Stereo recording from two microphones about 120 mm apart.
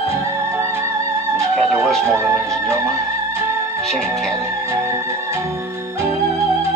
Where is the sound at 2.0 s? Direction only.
20° right (ahead or behind).